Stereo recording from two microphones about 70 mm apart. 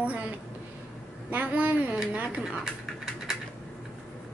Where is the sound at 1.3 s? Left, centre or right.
Right.